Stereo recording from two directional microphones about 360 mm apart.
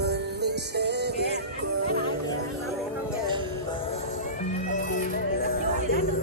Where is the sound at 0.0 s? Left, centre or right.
Right.